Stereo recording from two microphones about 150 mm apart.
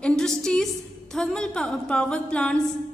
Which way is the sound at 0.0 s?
5° left (ahead or behind).